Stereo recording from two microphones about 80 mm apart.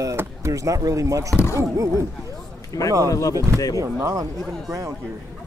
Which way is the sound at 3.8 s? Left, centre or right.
Right.